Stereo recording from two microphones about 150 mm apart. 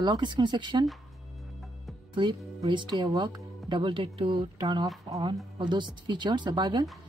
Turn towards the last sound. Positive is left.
turn(degrees=-30)  # may be behind; listen again after turning